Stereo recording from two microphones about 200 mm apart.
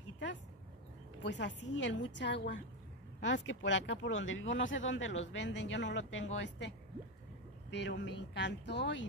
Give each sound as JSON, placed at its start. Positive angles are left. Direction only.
{"t": 0.0, "sound": "dog", "side_deg": 65}
{"t": 1.2, "sound": "a woman's voice", "side_deg": 65}
{"t": 7.7, "sound": "a woman's voice", "side_deg": 65}